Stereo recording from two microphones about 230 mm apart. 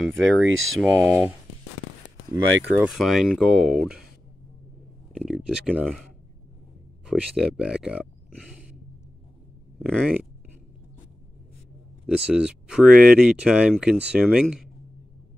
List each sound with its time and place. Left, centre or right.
0.2 s speech: centre
2.3 s speech: centre
5.1 s speech: centre
7.1 s speech: centre
12.1 s speech: centre